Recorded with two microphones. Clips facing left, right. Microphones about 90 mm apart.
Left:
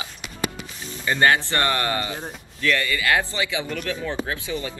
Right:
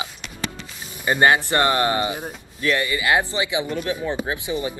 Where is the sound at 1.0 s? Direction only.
20° right (ahead or behind).